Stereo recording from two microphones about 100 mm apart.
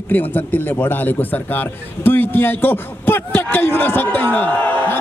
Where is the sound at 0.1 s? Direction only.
20° left (ahead or behind).